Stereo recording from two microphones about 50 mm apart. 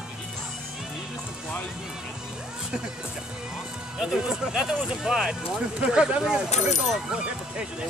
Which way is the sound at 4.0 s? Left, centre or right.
Centre.